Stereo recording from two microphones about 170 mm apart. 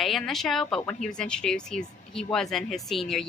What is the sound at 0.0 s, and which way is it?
A woman's voice, centre (ahead or behind).